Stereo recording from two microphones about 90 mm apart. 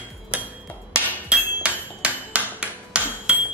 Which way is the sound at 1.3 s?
15° right (ahead or behind).